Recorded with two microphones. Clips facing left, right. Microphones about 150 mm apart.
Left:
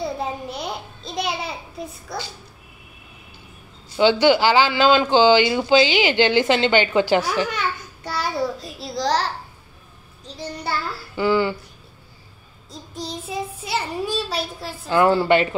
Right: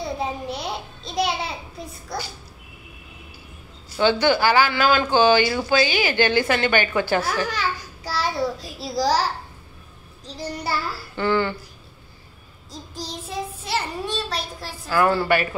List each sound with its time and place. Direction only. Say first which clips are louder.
0.0 s a child's voice: left 1 dB; centre (ahead or behind)
3.9 s speech: left 3 dB; 15° left (ahead or behind)
7.4 s a child's voice: even; centre (ahead or behind)
10.2 s child singing: even; centre (ahead or behind)
11.1 s speech: left 2 dB; 10° left (ahead or behind)
12.9 s child singing: left 2 dB; centre (ahead or behind)
14.9 s speech: left 3 dB; 20° left (ahead or behind)